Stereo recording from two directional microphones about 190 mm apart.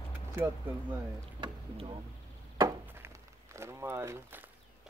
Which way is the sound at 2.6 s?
15° right (ahead or behind).